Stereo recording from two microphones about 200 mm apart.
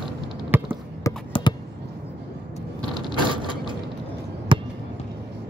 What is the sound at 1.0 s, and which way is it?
Basketball bounce, 20° left (ahead or behind).